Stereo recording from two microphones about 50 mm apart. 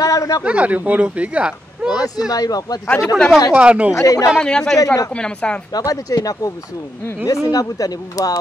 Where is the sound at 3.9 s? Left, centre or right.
Left.